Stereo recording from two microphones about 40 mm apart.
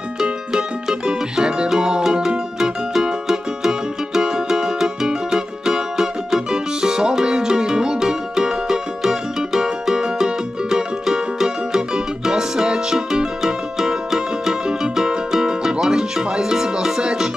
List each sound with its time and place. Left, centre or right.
0.2 s music: centre